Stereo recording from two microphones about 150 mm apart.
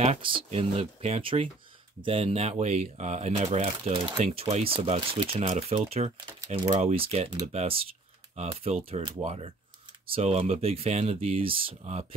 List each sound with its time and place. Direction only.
0.0 s speech: 40° right (ahead or behind)
6.8 s speech: 45° right (ahead or behind)